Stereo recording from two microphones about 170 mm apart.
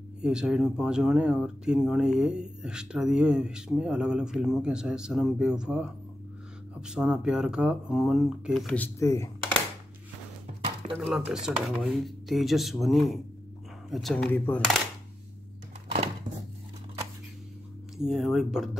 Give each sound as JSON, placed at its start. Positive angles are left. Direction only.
{"t": 0.2, "sound": "speech", "side_deg": -5}
{"t": 11.0, "sound": "speech", "side_deg": -5}
{"t": 16.3, "sound": "a sound", "side_deg": -25}
{"t": 17.9, "sound": "speech", "side_deg": 0}